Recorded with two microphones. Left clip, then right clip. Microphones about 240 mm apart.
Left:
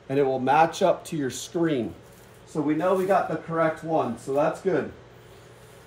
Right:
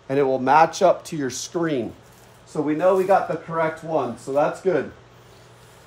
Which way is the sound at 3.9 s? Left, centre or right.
Right.